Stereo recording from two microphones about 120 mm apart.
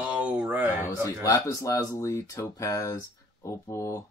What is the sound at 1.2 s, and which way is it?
Speech, 25° left (ahead or behind).